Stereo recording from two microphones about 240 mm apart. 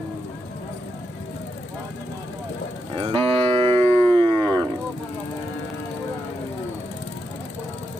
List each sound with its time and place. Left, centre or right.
3.0 s cattle: right